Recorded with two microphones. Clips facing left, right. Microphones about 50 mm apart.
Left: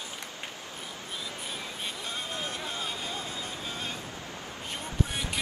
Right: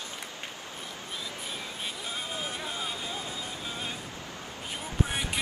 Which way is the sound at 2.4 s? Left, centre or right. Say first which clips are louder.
Even; centre.